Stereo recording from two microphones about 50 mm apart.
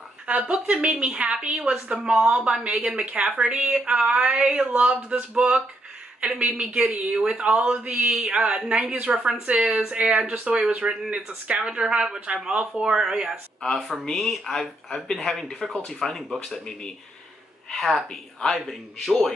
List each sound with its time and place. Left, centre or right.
0.3 s a woman's voice: right
3.3 s a sound: right
4.5 s a woman's voice: right
9.6 s speech: right
9.8 s a woman's voice: right
12.4 s a sound: centre
14.0 s a man's voice: centre